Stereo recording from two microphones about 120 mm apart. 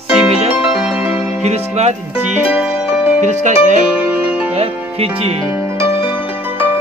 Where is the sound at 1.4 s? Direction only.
65° right (ahead or behind).